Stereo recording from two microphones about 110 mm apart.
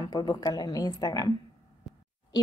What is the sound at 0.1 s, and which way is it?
A woman's voice, 35° left (ahead or behind).